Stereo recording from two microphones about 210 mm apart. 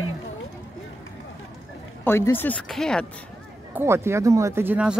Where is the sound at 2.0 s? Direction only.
10° left (ahead or behind).